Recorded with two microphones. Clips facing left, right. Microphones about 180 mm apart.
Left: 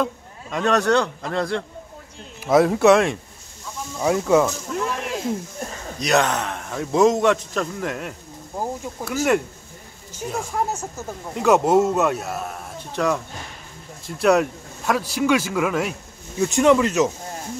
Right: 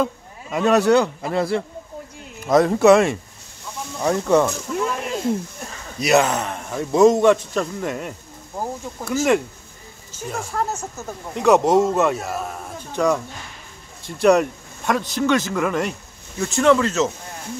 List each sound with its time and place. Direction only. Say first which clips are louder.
0.0 s speech: right 2 dB; 5° right (ahead or behind)
2.4 s a man's voice: right 1 dB; 5° left (ahead or behind)
8.5 s speech: left 1 dB; 10° left (ahead or behind)
10.5 s a man's voice: even; 10° left (ahead or behind)
16.3 s speech: even; 15° left (ahead or behind)